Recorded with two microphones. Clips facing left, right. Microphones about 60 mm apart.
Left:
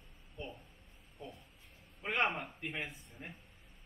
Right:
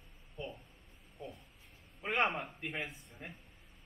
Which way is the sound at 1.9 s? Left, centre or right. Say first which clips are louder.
Right 1 dB; centre.